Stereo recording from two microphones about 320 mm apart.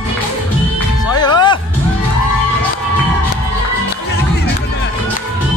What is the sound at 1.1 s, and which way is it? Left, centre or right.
Music, centre.